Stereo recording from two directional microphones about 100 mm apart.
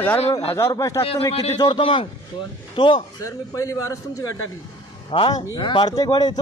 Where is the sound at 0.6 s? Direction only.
30° left (ahead or behind).